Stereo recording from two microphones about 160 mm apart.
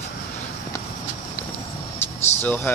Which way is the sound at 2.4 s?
10° left (ahead or behind).